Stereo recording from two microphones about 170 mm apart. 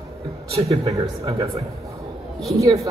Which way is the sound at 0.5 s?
35° right (ahead or behind).